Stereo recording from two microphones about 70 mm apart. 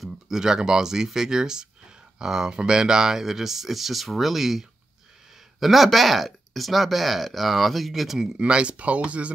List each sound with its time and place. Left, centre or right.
0.0 s speech: centre
8.4 s speech: centre